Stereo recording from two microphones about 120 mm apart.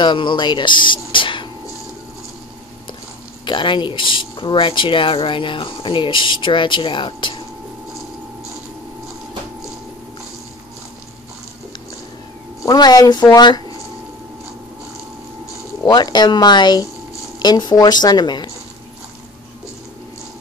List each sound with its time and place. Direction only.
0.0 s speech: 40° left (ahead or behind)
3.4 s speech: 40° left (ahead or behind)
12.6 s speech: 35° left (ahead or behind)
15.8 s speech: 35° left (ahead or behind)